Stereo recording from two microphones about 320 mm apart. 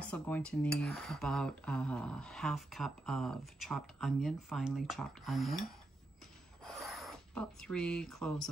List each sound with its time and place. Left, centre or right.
0.0 s speech: centre
6.6 s filing: centre